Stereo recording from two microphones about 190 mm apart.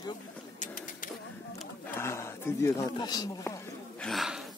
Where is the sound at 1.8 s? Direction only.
15° left (ahead or behind).